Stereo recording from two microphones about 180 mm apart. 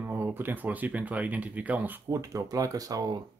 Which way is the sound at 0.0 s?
10° right (ahead or behind).